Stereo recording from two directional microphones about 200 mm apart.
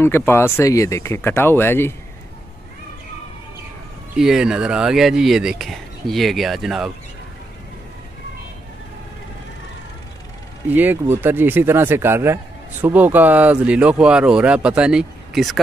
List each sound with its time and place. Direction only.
0.0 s speech: 10° left (ahead or behind)
4.2 s speech: 5° right (ahead or behind)
10.7 s speech: 10° right (ahead or behind)